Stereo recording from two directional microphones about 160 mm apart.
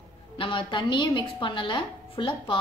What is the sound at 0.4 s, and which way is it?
A woman's voice, 30° left (ahead or behind).